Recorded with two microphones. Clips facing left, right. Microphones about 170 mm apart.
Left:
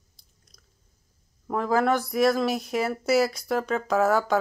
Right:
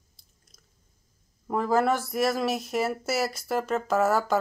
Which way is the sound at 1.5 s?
Centre (ahead or behind).